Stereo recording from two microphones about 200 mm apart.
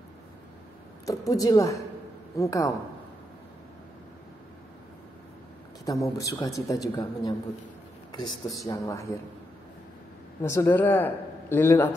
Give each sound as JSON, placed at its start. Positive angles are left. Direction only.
{"t": 1.0, "sound": "speech", "side_deg": 15}
{"t": 5.9, "sound": "speech", "side_deg": 15}
{"t": 8.3, "sound": "speech", "side_deg": 0}
{"t": 8.6, "sound": "speech", "side_deg": 15}
{"t": 10.4, "sound": "speech", "side_deg": 15}